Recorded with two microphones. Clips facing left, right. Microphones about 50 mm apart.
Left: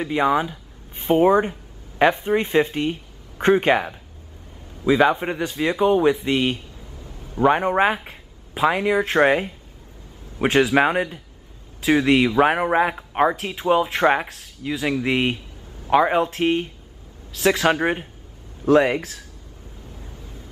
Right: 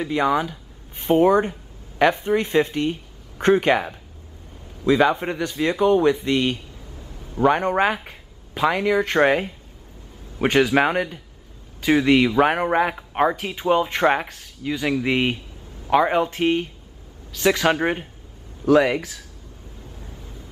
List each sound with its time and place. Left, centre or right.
0.0 s a man's voice: centre
18.7 s speech: left